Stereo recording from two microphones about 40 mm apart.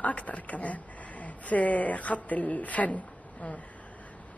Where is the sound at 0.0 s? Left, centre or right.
Left.